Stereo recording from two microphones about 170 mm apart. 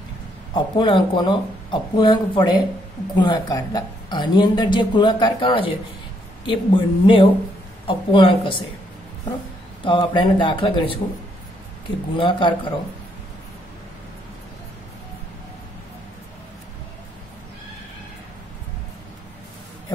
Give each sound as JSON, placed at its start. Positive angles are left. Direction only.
{"t": 0.7, "sound": "a woman's voice", "side_deg": 30}
{"t": 9.8, "sound": "a woman's voice", "side_deg": 30}
{"t": 12.2, "sound": "a woman's voice", "side_deg": 30}